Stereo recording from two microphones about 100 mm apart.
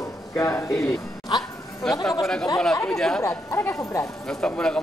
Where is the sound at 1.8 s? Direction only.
5° left (ahead or behind).